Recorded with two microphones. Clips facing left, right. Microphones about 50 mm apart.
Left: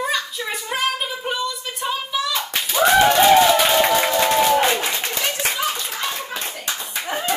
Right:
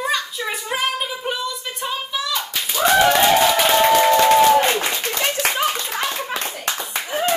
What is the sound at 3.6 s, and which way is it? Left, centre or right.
Music, centre.